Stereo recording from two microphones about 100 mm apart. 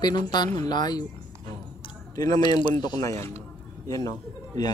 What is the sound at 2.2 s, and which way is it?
Speech, 45° left (ahead or behind).